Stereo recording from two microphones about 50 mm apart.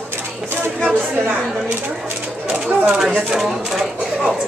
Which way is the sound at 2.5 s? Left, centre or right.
Right.